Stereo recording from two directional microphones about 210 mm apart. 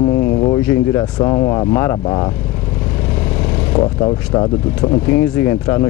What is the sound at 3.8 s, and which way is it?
Speech, 20° left (ahead or behind).